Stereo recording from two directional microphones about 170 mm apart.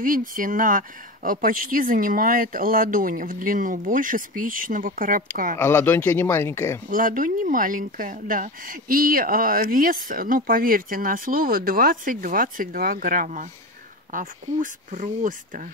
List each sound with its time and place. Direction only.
0.0 s speech: 55° right (ahead or behind)
5.6 s speech: 15° left (ahead or behind)
6.9 s speech: 55° right (ahead or behind)